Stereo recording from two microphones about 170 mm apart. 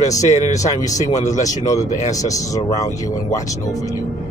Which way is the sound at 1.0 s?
45° left (ahead or behind).